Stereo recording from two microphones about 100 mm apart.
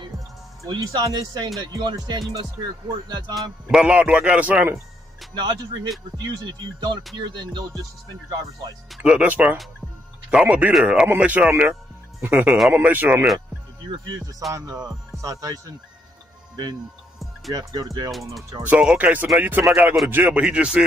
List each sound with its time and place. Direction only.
0.7 s speech: 40° right (ahead or behind)
1.6 s music: 45° right (ahead or behind)
3.6 s a man's voice: 10° right (ahead or behind)
5.3 s speech: 45° right (ahead or behind)
6.1 s music: 45° right (ahead or behind)
9.0 s a man's voice: 15° right (ahead or behind)
14.5 s speech: 35° right (ahead or behind)
17.5 s speech: 35° right (ahead or behind)
18.6 s a man's voice: 15° right (ahead or behind)
20.4 s a man's voice: 10° right (ahead or behind)